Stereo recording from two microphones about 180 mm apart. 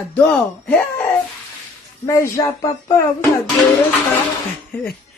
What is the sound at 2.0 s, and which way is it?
Speech, 20° left (ahead or behind).